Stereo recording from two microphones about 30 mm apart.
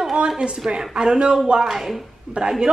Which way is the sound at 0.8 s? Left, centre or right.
Right.